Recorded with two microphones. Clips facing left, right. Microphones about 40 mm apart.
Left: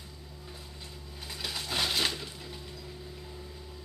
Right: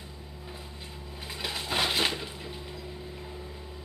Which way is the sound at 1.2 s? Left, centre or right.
Centre.